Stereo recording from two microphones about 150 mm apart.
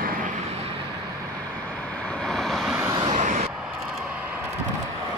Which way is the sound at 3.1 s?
55° right (ahead or behind).